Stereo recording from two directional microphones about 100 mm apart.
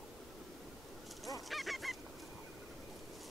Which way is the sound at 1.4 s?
Centre (ahead or behind).